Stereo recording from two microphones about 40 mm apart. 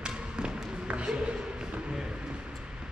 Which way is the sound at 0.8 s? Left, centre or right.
Right.